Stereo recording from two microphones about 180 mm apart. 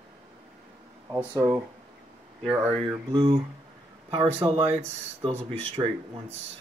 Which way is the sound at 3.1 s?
25° right (ahead or behind).